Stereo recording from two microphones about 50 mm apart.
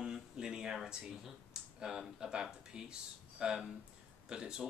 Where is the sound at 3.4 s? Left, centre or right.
Centre.